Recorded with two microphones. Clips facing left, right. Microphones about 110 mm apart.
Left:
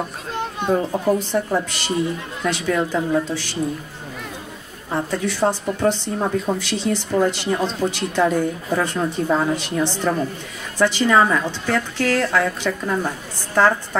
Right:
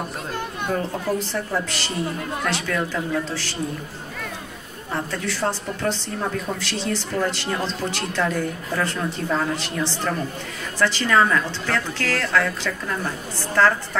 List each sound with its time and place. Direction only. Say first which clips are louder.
0.7 s a woman's voice: left 5 dB; 20° left (ahead or behind)
4.9 s a woman's voice: left 4 dB; 15° left (ahead or behind)